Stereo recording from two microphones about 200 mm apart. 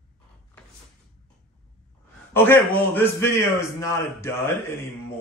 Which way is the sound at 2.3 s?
10° left (ahead or behind).